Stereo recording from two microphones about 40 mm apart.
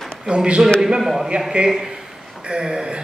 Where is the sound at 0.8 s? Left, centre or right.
Centre.